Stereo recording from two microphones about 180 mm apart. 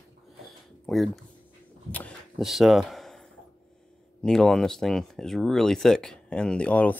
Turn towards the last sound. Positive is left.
turn(degrees=10)  # may be behind; listen again after turning